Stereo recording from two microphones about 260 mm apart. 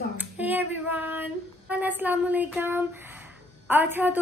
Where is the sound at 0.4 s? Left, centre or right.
Centre.